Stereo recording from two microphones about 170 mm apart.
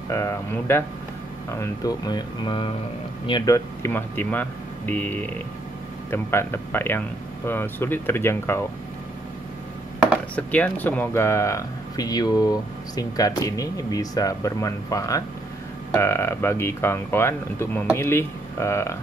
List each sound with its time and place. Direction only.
0.1 s speech: 15° left (ahead or behind)
10.3 s speech: 10° left (ahead or behind)